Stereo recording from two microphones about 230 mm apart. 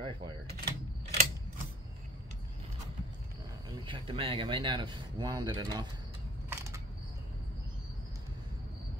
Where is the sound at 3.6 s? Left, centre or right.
Right.